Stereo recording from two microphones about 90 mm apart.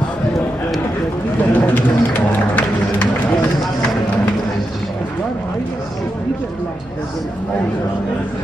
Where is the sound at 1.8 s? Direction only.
20° left (ahead or behind).